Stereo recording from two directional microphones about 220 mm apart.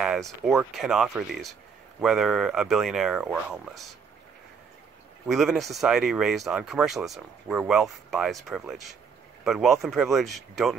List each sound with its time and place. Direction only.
0.0 s a sound: centre (ahead or behind)
0.5 s speech: centre (ahead or behind)
5.2 s speech: centre (ahead or behind)